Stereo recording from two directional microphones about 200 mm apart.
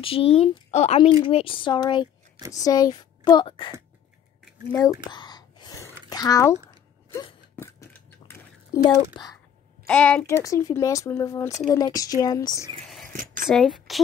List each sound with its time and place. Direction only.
0.0 s speech: 30° left (ahead or behind)
5.1 s whispering: 20° left (ahead or behind)
7.5 s a sound: 15° left (ahead or behind)
8.9 s speech: 20° left (ahead or behind)
9.8 s speech: 5° left (ahead or behind)
10.4 s speech: 15° left (ahead or behind)
13.1 s speech: 40° right (ahead or behind)
13.5 s speech: centre (ahead or behind)